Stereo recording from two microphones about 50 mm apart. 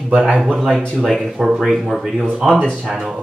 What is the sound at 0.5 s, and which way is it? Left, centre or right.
Speech, centre.